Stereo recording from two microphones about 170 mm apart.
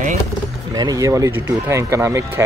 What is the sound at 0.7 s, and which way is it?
Speech, 20° right (ahead or behind).